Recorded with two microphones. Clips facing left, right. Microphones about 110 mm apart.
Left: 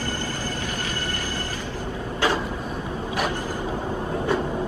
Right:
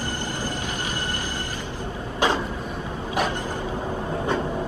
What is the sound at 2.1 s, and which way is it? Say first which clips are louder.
Vehicle: right 1 dB; 20° right (ahead or behind).